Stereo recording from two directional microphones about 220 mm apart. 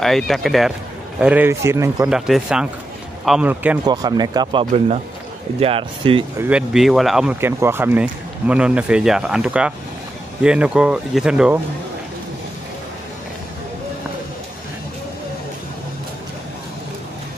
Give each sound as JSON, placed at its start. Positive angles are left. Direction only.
{"t": 0.0, "sound": "speech", "side_deg": 0}
{"t": 2.0, "sound": "speech", "side_deg": 0}
{"t": 3.8, "sound": "speech", "side_deg": -20}
{"t": 6.3, "sound": "speech", "side_deg": -5}